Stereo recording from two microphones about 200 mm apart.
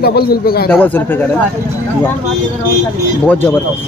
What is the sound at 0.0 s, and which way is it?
Speech, 50° left (ahead or behind).